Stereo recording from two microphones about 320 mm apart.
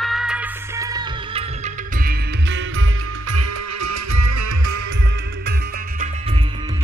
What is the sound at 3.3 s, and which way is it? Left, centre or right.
Music, right.